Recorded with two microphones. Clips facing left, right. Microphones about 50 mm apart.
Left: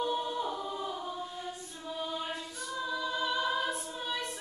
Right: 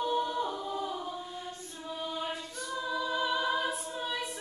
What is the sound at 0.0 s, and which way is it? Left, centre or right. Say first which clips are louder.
A capella: right 2 dB; centre.